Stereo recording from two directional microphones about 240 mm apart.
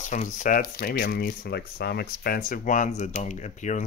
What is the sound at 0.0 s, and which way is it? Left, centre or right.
Speech, left.